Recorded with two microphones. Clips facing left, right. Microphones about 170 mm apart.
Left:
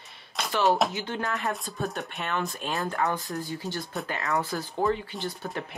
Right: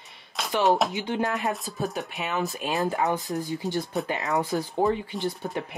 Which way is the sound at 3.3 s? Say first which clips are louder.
Right 4 dB; 20° right (ahead or behind).